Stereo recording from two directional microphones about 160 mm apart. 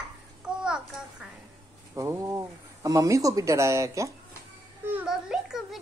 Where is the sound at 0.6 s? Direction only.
5° right (ahead or behind).